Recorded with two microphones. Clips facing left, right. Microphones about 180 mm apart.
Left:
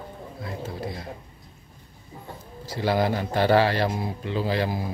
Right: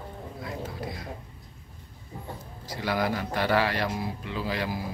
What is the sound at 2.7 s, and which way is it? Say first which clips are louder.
A man's voice: left 4 dB; 30° left (ahead or behind).